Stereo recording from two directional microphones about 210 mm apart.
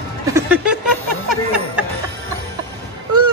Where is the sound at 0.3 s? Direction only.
10° right (ahead or behind).